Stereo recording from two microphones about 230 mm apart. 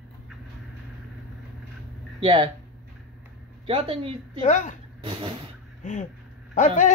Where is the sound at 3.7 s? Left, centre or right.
Right.